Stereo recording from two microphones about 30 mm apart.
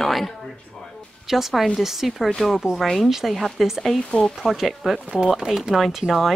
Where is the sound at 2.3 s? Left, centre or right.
Centre.